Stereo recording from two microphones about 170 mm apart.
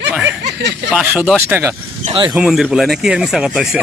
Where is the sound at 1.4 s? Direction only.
15° right (ahead or behind).